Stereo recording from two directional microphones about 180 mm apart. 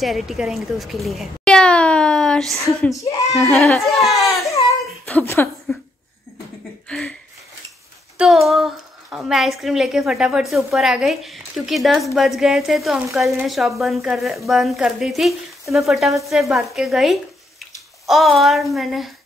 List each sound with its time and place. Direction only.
0.0 s a woman's voice: centre (ahead or behind)
3.0 s speech: 20° left (ahead or behind)
3.3 s a woman's voice: centre (ahead or behind)
5.0 s a woman's voice: 10° left (ahead or behind)
6.9 s a woman's voice: 5° left (ahead or behind)
8.2 s a woman's voice: centre (ahead or behind)